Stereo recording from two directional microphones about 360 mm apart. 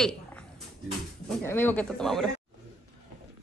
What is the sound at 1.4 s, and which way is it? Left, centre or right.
Speech, centre.